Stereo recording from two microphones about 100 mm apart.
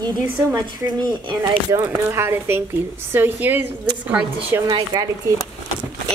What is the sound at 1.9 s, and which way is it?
A woman's voice, 25° right (ahead or behind).